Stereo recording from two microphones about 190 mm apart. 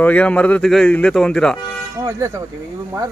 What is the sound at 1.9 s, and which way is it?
Speech, 15° right (ahead or behind).